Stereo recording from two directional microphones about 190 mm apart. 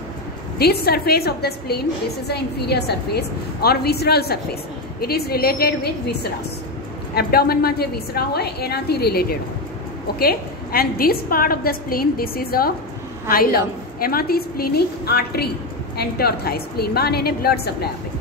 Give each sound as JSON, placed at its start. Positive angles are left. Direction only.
{"t": 0.6, "sound": "a woman's voice", "side_deg": 55}
{"t": 7.2, "sound": "a woman's voice", "side_deg": 55}